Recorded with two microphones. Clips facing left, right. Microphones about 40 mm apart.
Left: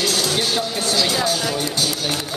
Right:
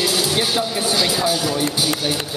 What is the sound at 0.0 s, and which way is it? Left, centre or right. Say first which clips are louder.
Speech: right 1 dB; centre.